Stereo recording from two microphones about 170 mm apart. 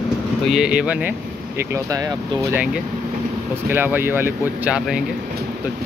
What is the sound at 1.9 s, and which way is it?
Speech, 20° right (ahead or behind).